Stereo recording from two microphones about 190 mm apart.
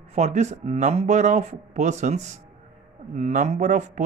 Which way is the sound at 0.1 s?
35° right (ahead or behind).